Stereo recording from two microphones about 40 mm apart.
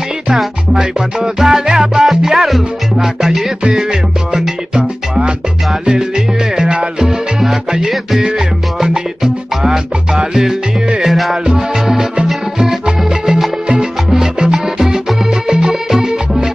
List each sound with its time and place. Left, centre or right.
0.7 s music: centre
2.0 s music: centre
8.8 s music: centre
11.1 s music: centre
11.4 s music: centre
13.7 s salsa music: centre
15.4 s music: centre